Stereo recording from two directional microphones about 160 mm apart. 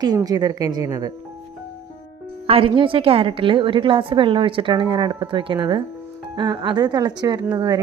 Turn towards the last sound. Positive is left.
turn(degrees=-25)  # may be behind; listen again after turning